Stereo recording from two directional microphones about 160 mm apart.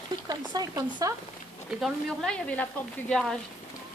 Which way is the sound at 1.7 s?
Centre (ahead or behind).